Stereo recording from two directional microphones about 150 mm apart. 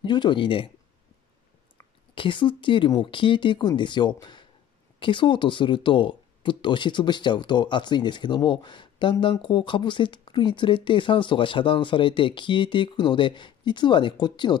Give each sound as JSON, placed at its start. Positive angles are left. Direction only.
{"t": 0.0, "sound": "speech", "side_deg": 30}
{"t": 2.1, "sound": "speech", "side_deg": 35}